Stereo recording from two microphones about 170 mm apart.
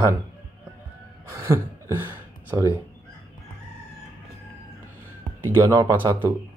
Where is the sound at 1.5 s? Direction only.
10° right (ahead or behind).